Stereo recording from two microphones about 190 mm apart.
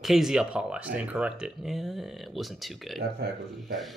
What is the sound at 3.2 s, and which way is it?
Speech, 60° right (ahead or behind).